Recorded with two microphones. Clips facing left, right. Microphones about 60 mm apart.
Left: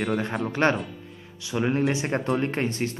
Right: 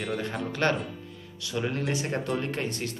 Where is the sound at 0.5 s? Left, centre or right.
Left.